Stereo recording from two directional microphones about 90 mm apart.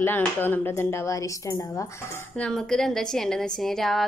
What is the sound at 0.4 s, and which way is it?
Speech, 25° left (ahead or behind).